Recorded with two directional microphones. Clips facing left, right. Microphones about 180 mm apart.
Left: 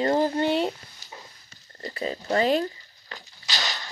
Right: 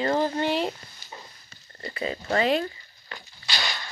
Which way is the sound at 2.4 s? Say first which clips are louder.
Left 1 dB; 35° left (ahead or behind).